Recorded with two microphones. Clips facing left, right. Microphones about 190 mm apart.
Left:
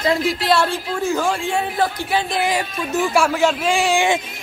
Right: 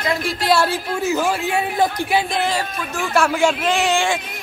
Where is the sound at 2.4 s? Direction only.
20° left (ahead or behind).